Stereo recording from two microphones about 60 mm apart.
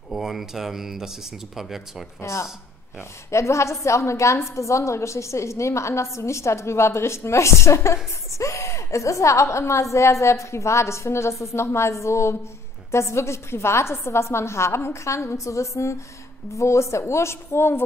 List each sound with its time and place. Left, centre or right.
0.1 s speech: centre
3.0 s a woman's voice: left